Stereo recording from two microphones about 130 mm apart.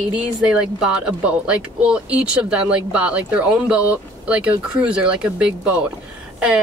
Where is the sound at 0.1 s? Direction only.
5° right (ahead or behind).